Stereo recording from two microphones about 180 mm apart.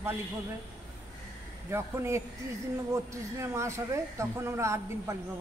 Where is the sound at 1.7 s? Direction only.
15° right (ahead or behind).